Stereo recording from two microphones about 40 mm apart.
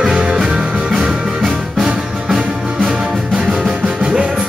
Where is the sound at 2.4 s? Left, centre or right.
Centre.